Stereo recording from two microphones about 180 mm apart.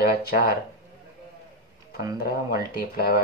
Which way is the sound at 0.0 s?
55° left (ahead or behind).